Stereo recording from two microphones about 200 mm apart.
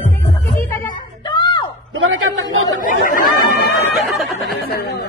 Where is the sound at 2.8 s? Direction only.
45° left (ahead or behind).